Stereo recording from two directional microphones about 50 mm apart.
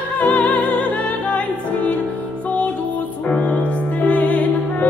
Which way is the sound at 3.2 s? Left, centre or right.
Left.